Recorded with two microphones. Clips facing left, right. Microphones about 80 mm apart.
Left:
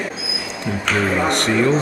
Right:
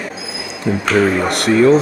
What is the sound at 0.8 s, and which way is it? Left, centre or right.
Speech, centre.